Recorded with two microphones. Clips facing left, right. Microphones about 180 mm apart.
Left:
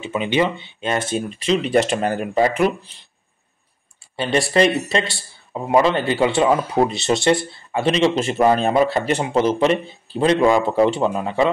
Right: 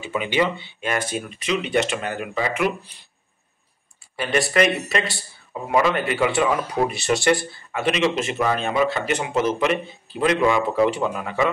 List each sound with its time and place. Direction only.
0.0 s a man's voice: 20° left (ahead or behind)
4.2 s a man's voice: 30° left (ahead or behind)